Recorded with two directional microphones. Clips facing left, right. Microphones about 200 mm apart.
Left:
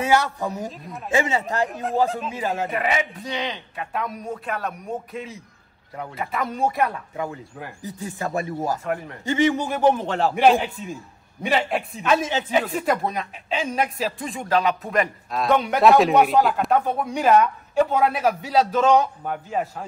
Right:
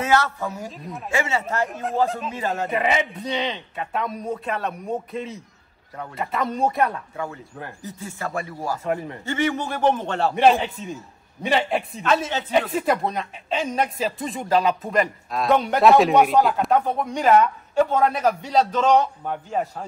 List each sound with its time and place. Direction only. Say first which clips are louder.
0.0 s a man's voice: left 1 dB; 15° left (ahead or behind)
0.7 s speech: even; centre (ahead or behind)
1.1 s a man's voice: left 3 dB; 20° left (ahead or behind)
1.7 s speech: even; centre (ahead or behind)
7.2 s a man's voice: left 1 dB; 10° left (ahead or behind)
8.8 s speech: right 2 dB; centre (ahead or behind)
9.2 s a man's voice: left 7 dB; 15° left (ahead or behind)
12.6 s speech: right 1 dB; centre (ahead or behind)